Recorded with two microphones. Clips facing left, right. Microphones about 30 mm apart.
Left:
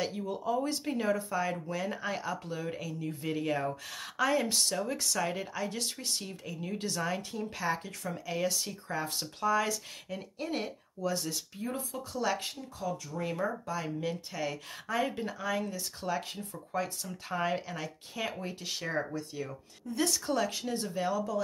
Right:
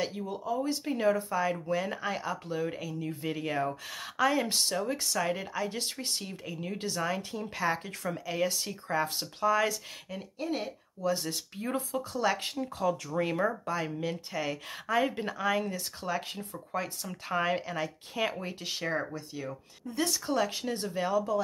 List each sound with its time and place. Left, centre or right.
0.0 s speech: centre
11.0 s speech: centre
11.2 s speech: right
12.0 s speech: centre
12.5 s speech: right
13.2 s speech: right
14.0 s speech: centre